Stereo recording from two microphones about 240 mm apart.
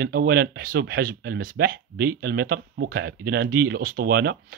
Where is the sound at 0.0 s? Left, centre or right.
Right.